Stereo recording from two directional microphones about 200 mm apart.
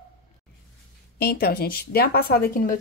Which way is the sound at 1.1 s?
50° left (ahead or behind).